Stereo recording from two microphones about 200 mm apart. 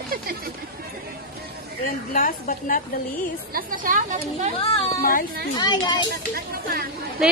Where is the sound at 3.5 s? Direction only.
45° right (ahead or behind).